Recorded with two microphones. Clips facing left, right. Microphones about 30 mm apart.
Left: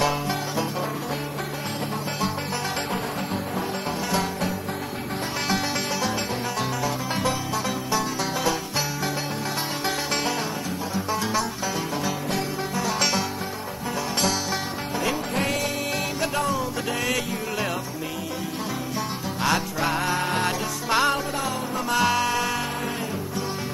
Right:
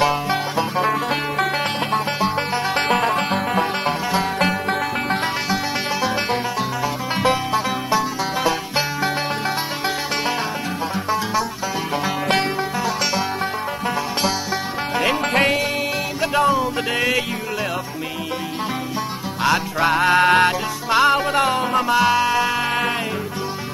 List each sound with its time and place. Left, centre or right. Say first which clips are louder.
0.0 s music: right 5 dB; right
2.9 s music: right 10 dB; right
15.0 s music: right 8 dB; right
16.3 s music: right 11 dB; right
19.8 s music: right 7 dB; right
20.1 s music: right 11 dB; right
20.9 s music: right 5 dB; centre
21.4 s music: right 9 dB; right
21.8 s music: right 3 dB; centre